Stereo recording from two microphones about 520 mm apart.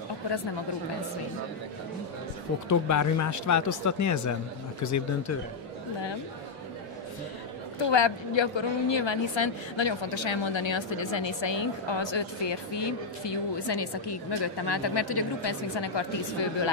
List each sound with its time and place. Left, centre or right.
2.7 s speech: left
7.8 s a woman's voice: left